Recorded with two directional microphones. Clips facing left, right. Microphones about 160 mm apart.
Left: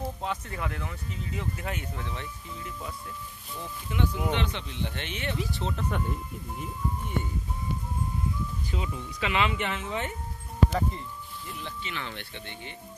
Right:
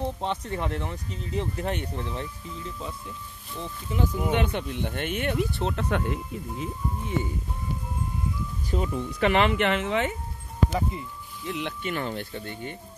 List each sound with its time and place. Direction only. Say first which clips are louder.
0.0 s speech: right 4 dB; 25° right (ahead or behind)
3.9 s speech: right 2 dB; 30° right (ahead or behind)
4.3 s speech: right 5 dB; 50° right (ahead or behind); by 7.2 s 90° right
8.6 s speech: right 6 dB; 45° right (ahead or behind); by 10.1 s 85° right
10.7 s speech: right 1 dB; 10° right (ahead or behind)
11.4 s speech: right 10 dB; 90° right
11.8 s speech: right 8 dB; 45° right (ahead or behind)